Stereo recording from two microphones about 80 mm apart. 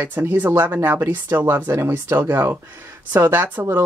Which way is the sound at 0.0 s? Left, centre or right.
Right.